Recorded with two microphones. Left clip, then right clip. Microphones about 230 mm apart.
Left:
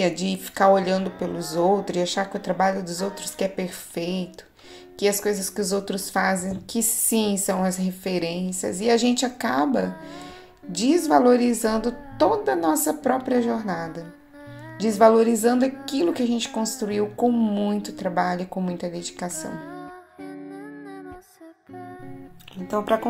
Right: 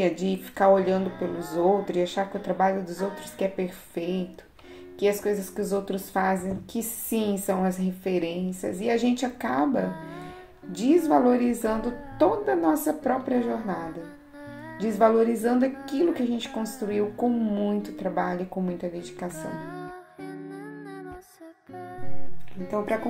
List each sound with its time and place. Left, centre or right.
0.0 s a woman's voice: left
19.3 s music: centre